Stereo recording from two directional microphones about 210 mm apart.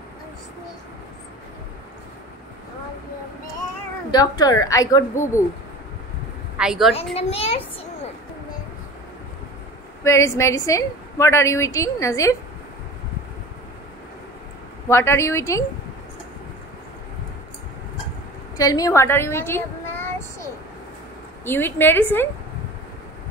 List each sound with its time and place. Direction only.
4.1 s a woman's voice: 20° left (ahead or behind)
6.6 s a woman's voice: centre (ahead or behind)
7.2 s a child's voice: 30° left (ahead or behind)
10.0 s a woman's voice: 15° left (ahead or behind)
14.9 s a woman's voice: 10° left (ahead or behind)
18.6 s a woman's voice: 15° left (ahead or behind)
21.5 s a woman's voice: 10° left (ahead or behind)